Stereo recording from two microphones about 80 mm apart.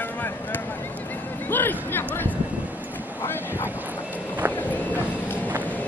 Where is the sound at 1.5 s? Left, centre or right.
Left.